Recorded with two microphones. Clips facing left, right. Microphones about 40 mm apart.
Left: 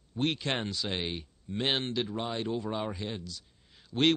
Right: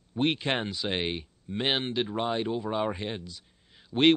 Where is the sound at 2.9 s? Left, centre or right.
Right.